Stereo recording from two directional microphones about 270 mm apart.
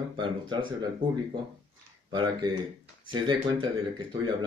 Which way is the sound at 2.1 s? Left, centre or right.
Centre.